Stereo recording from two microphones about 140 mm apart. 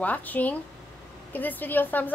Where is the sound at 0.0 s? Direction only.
10° left (ahead or behind).